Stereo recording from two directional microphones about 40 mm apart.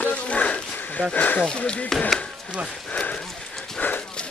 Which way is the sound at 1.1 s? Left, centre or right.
Left.